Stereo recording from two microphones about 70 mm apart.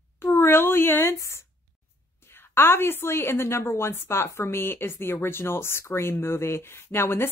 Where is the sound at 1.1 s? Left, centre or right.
Left.